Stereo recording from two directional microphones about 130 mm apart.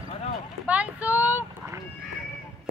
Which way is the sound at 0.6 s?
10° right (ahead or behind).